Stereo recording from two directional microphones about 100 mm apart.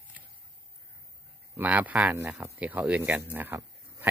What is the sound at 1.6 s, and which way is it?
Speech, 15° right (ahead or behind).